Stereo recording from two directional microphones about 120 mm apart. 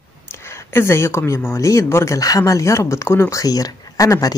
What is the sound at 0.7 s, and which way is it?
Speech, 20° left (ahead or behind).